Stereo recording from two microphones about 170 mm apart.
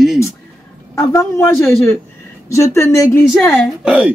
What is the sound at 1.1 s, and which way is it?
Speech, 15° left (ahead or behind).